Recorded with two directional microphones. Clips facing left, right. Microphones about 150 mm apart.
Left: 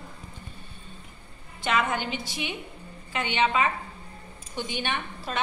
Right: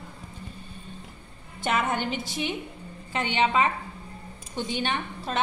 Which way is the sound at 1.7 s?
45° right (ahead or behind).